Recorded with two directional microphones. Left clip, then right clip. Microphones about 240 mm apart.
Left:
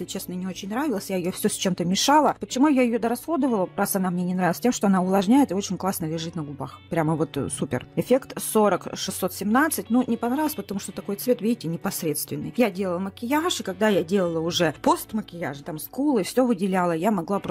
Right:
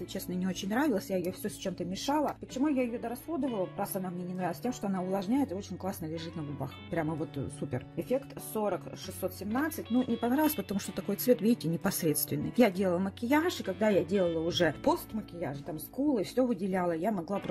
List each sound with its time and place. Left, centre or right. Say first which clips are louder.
0.3 s speech: left 3 dB; centre
1.4 s speech: left 11 dB; left
3.4 s speech: left 8 dB; left
3.8 s speech: left 10 dB; left
9.9 s speech: left 5 dB; left
10.3 s speech: left 3 dB; centre; by 17.2 s left